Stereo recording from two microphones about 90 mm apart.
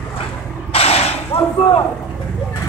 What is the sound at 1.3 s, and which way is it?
Whip, 90° left.